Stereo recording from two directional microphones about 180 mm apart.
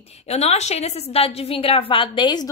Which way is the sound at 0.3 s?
35° left (ahead or behind).